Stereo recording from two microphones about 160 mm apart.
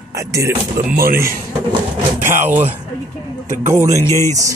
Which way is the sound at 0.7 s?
65° right (ahead or behind).